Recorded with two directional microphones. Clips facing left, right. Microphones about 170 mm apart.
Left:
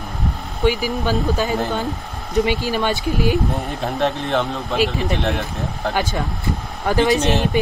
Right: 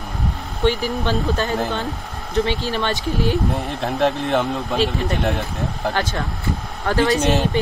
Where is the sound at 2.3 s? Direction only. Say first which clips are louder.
Left 2 dB; 15° left (ahead or behind).